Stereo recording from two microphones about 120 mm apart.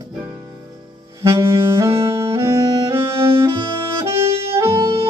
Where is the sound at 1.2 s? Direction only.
25° right (ahead or behind).